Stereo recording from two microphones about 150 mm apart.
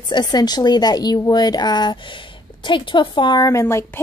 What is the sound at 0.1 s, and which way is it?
A woman's voice, 30° left (ahead or behind).